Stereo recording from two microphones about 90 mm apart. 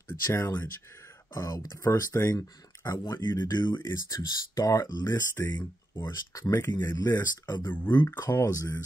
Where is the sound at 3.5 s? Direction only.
60° left (ahead or behind).